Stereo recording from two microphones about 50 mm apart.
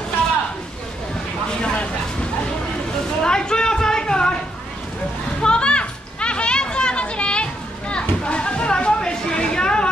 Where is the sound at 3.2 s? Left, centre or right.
Centre.